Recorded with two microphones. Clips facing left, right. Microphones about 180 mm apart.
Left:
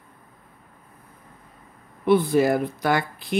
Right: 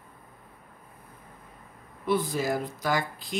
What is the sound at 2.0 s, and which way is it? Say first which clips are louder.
Speech: left 9 dB; 65° left (ahead or behind).